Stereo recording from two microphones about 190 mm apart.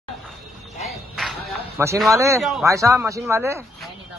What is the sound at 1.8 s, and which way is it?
Speech, 15° right (ahead or behind).